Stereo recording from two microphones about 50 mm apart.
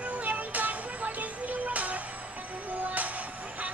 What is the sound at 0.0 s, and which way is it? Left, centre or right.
Music, right.